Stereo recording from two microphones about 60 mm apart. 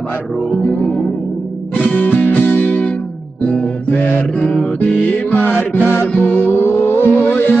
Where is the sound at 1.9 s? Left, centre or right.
Left.